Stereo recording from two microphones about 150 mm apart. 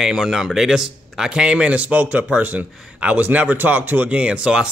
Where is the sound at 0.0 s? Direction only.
5° right (ahead or behind).